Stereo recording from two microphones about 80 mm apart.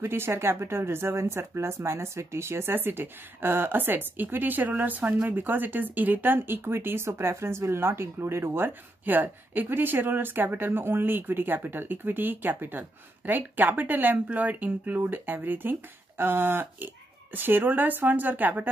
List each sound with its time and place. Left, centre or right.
0.0 s speech: right